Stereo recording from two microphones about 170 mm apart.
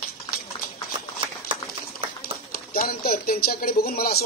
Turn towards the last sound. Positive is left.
turn(degrees=65)  # may be behind; listen again after turning